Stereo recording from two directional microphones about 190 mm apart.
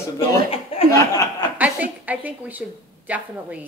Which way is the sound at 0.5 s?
30° left (ahead or behind).